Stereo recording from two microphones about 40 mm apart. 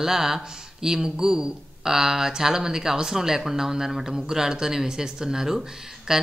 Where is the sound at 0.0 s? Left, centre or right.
Centre.